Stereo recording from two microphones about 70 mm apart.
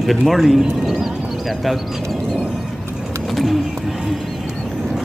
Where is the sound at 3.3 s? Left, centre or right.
Centre.